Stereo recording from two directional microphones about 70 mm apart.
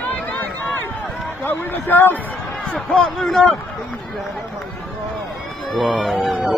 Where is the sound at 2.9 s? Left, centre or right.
Centre.